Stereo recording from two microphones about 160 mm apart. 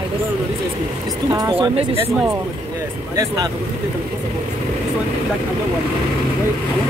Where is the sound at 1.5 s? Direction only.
35° right (ahead or behind).